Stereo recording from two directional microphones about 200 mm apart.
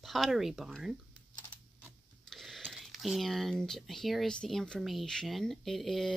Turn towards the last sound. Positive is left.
turn(degrees=0)  # may be behind; listen again after turning